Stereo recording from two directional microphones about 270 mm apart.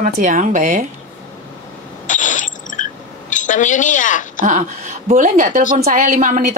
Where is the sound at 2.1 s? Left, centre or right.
Left.